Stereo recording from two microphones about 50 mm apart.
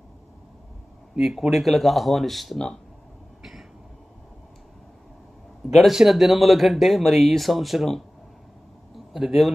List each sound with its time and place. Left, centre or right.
1.1 s speech: centre
5.8 s speech: centre
8.9 s a sound: centre